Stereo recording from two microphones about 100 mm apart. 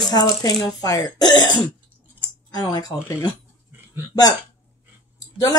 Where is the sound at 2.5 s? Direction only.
45° left (ahead or behind).